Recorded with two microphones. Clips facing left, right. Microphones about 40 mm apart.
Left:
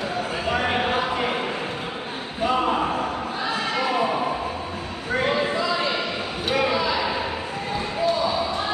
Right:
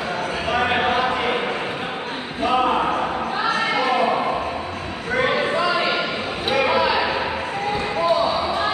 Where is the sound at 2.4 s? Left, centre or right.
Right.